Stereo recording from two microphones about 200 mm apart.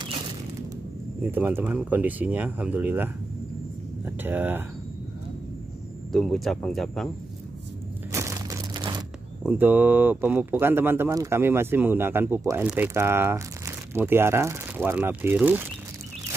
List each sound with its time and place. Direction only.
1.3 s speech: 10° right (ahead or behind)
6.1 s speech: centre (ahead or behind)
8.1 s crumpling: 15° right (ahead or behind)
9.4 s speech: 10° right (ahead or behind)